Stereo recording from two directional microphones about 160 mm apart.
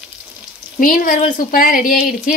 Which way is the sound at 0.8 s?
60° left (ahead or behind).